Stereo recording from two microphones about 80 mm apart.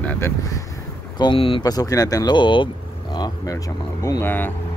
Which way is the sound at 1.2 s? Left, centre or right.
Left.